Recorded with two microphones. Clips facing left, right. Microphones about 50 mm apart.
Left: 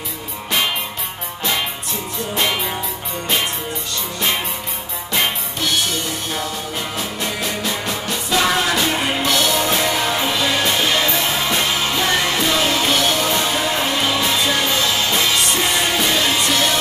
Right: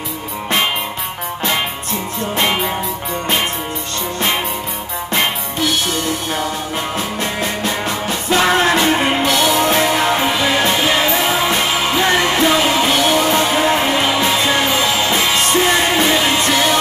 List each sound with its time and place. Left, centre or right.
2.3 s music: right
7.2 s music: right
8.3 s music: right
9.2 s music: centre
13.3 s music: right